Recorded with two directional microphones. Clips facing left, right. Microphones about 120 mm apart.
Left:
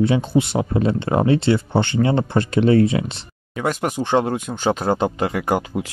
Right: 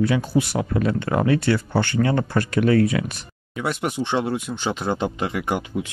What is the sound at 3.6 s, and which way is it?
Speech, 45° left (ahead or behind).